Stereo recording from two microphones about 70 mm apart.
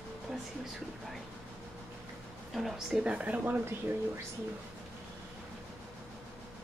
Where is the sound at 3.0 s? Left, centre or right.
Centre.